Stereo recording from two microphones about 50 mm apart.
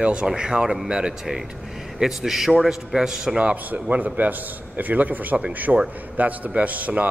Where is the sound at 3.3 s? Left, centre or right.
Right.